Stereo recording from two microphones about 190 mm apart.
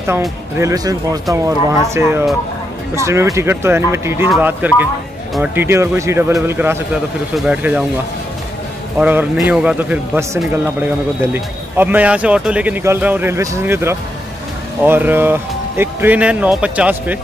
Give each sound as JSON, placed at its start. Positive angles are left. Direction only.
{"t": 0.6, "sound": "a man's voice", "side_deg": -15}
{"t": 8.9, "sound": "a man's voice", "side_deg": -10}